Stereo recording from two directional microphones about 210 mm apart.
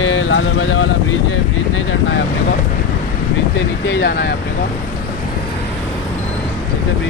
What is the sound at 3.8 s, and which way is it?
Speech, 55° left (ahead or behind).